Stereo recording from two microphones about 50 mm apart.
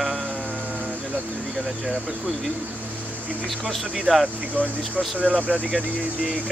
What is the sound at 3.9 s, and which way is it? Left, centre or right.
Speech, centre.